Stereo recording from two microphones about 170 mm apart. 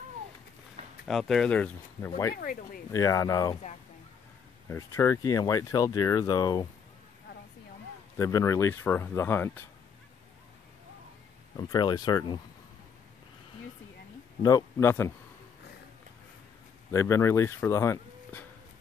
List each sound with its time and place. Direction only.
1.0 s speech: centre (ahead or behind)
2.3 s speech: 60° left (ahead or behind)
2.9 s speech: 20° left (ahead or behind)
4.6 s speech: 15° left (ahead or behind)
8.2 s speech: 20° left (ahead or behind)
11.5 s speech: 25° left (ahead or behind)
14.4 s speech: 15° left (ahead or behind)
16.9 s speech: 15° left (ahead or behind)